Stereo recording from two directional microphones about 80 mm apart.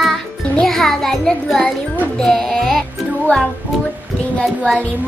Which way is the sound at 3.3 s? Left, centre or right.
Centre.